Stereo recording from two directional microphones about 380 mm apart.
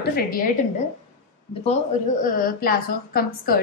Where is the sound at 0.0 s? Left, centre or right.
Left.